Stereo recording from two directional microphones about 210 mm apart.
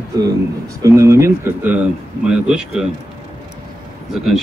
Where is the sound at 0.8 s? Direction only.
15° right (ahead or behind).